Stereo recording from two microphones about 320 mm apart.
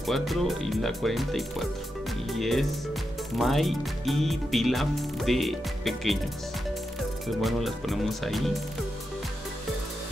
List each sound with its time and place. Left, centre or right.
0.0 s speech: centre
7.4 s speech: centre